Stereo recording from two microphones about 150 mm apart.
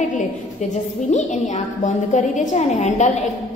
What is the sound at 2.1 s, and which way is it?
Speech, 55° left (ahead or behind).